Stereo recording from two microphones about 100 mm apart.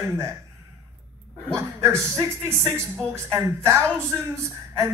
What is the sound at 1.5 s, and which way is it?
Speech, 25° right (ahead or behind).